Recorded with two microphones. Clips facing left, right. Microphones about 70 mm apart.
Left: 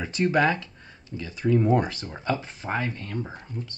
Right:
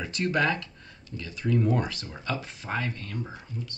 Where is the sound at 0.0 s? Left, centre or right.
Left.